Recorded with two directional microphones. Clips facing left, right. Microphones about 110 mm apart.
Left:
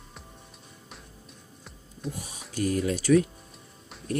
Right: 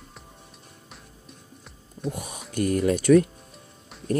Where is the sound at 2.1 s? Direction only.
55° right (ahead or behind).